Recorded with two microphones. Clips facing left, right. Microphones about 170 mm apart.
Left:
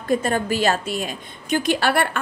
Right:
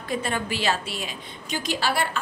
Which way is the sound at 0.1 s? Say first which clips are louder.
Left 7 dB; 45° left (ahead or behind).